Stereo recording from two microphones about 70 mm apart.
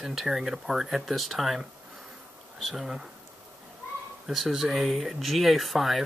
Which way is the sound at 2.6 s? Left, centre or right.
Centre.